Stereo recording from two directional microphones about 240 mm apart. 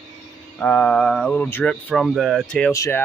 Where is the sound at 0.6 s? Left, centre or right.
Centre.